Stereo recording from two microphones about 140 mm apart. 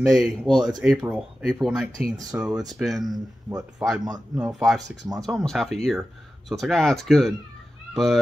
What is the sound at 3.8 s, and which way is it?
Speech, centre (ahead or behind).